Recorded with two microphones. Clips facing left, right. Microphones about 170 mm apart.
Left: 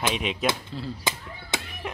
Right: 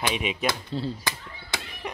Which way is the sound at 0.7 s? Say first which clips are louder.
Right 4 dB; 30° right (ahead or behind).